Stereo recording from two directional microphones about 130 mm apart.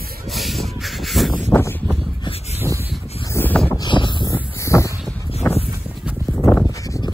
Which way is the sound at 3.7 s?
35° left (ahead or behind).